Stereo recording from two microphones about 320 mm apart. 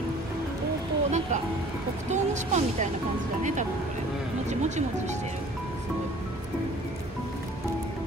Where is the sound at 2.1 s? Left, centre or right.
Right.